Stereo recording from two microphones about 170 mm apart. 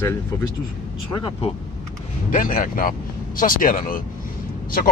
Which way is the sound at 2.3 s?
50° left (ahead or behind).